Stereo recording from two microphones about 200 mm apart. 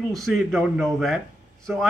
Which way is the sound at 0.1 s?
Centre (ahead or behind).